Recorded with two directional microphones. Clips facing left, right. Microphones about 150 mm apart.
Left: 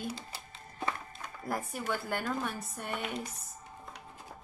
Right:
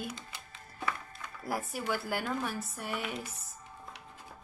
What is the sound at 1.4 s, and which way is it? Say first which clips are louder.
Speech: right 1 dB; 5° right (ahead or behind).